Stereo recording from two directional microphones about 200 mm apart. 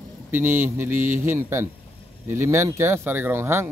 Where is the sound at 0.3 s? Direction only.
10° right (ahead or behind).